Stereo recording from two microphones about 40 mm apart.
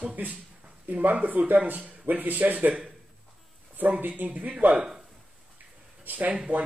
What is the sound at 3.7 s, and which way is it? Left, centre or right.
Speech, right.